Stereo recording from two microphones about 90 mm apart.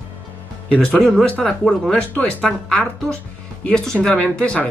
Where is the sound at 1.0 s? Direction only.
Centre (ahead or behind).